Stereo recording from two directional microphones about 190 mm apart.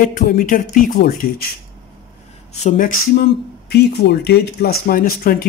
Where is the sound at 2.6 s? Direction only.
45° left (ahead or behind).